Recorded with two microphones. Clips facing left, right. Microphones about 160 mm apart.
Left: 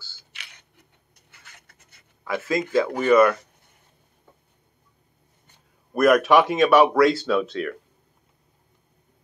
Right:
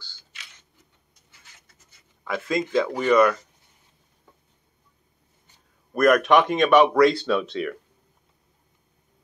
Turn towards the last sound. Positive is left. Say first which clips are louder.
# left 1 dB
turn(degrees=0)  # may be behind; listen again after turning